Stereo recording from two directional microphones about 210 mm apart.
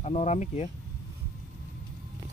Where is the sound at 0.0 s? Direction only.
35° left (ahead or behind).